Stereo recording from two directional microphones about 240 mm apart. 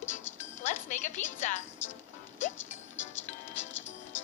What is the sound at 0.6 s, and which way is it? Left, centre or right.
Music, left.